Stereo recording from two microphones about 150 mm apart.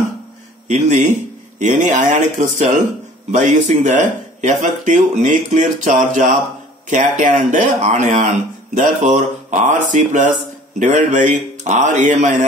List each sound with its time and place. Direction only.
0.7 s a man's voice: 55° right (ahead or behind)